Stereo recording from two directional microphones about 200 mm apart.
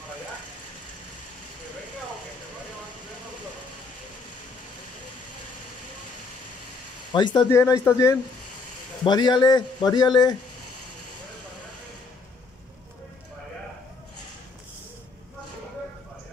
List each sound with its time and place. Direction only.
7.1 s a man's voice: 20° left (ahead or behind)